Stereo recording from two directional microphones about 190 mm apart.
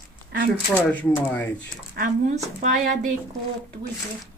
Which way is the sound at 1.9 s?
40° right (ahead or behind).